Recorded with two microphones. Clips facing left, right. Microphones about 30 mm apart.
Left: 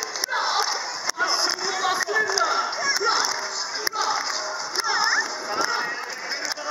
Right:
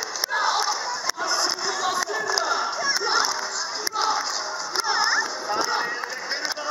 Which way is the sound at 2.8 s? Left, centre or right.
Centre.